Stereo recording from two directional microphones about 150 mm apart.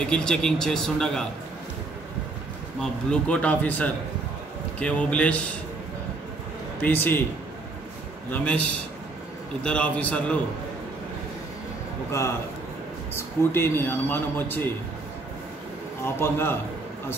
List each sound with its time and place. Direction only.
0.0 s a man's voice: 5° left (ahead or behind)
2.8 s a man's voice: 5° left (ahead or behind)
6.8 s a man's voice: 15° left (ahead or behind)
8.3 s a man's voice: 10° left (ahead or behind)
13.1 s a man's voice: 15° left (ahead or behind)
16.0 s a man's voice: 15° left (ahead or behind)